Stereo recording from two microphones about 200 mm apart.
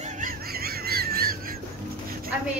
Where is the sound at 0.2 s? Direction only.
50° right (ahead or behind).